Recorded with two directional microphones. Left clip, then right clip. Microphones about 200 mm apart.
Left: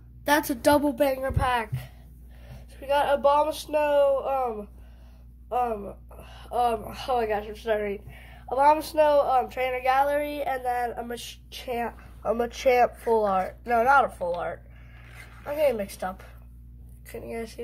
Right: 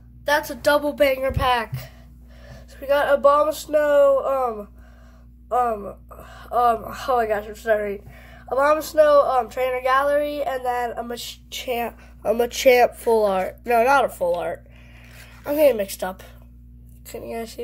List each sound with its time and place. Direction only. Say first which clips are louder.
0.2 s a woman's voice: right 2 dB; 35° left (ahead or behind)
0.8 s speech: right 5 dB; centre (ahead or behind)
1.2 s a woman's voice: right 5 dB; 10° right (ahead or behind)
12.2 s speech: right 6 dB; 30° right (ahead or behind)
17.1 s speech: right 4 dB; 15° right (ahead or behind)